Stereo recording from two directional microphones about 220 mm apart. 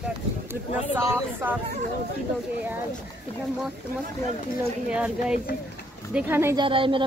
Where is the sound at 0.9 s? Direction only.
10° right (ahead or behind).